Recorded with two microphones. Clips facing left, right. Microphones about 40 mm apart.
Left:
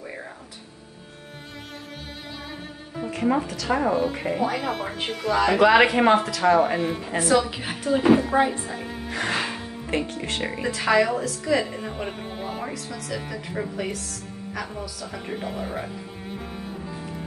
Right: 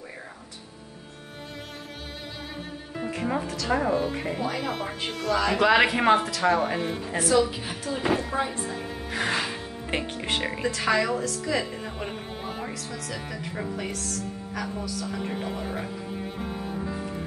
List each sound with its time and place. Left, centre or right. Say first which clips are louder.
3.1 s speech: left 5 dB; centre
7.2 s a woman's voice: left 1 dB; left
8.0 s speech: left 7 dB; centre
9.3 s speech: left 2 dB; centre
10.4 s speech: left 3 dB; centre